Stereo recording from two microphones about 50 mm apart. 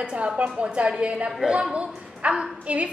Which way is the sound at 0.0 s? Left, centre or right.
Right.